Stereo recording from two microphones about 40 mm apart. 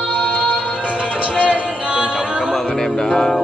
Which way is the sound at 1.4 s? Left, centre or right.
Right.